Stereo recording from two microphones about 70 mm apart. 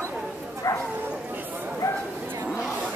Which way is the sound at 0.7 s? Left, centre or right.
Left.